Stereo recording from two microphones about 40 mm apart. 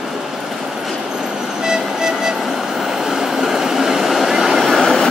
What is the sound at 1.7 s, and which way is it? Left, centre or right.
Vehicle, centre.